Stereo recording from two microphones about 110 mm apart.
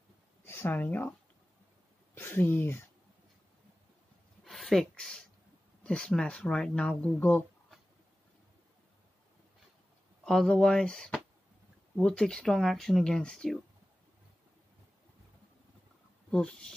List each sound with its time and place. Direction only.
0.5 s speech: 20° left (ahead or behind)
2.1 s speech: 20° left (ahead or behind)
4.5 s a sound: 5° left (ahead or behind)
5.9 s speech: 5° left (ahead or behind)
10.2 s speech: 5° left (ahead or behind)
16.3 s speech: 5° left (ahead or behind)